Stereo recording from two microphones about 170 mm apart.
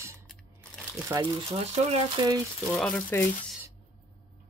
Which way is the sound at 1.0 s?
20° right (ahead or behind).